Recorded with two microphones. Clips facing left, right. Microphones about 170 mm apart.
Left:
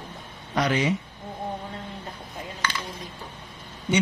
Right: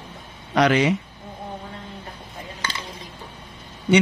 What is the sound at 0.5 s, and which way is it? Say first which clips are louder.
Speech: right 6 dB; 80° right.